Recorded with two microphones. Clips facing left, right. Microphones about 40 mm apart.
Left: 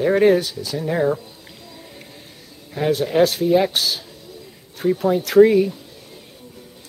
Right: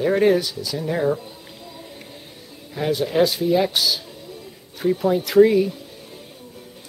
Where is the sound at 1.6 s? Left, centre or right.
Centre.